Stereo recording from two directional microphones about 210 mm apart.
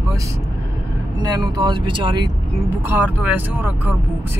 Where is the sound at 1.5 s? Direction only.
20° right (ahead or behind).